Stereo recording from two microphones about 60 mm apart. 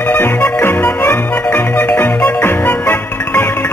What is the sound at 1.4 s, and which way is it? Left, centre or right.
Music, left.